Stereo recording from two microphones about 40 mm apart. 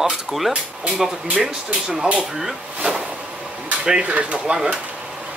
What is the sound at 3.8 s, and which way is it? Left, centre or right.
Speech, centre.